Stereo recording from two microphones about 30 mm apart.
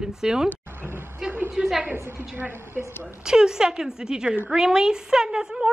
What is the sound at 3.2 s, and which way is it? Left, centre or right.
A woman's voice, right.